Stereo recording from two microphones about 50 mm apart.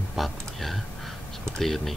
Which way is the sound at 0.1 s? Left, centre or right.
Centre.